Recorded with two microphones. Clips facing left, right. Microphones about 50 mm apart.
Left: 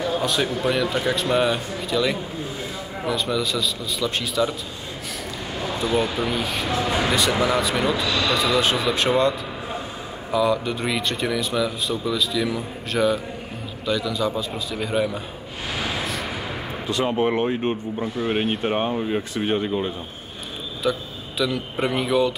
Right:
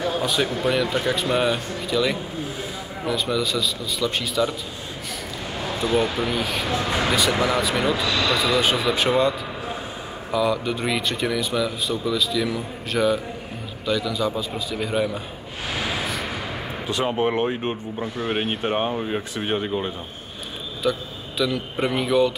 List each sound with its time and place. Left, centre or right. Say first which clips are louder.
0.2 s speech: even; centre
5.7 s speech: right 1 dB; centre
10.3 s speech: left 1 dB; centre
15.8 s vehicle: even; centre
16.9 s speech: left 1 dB; centre
20.8 s a man's voice: even; centre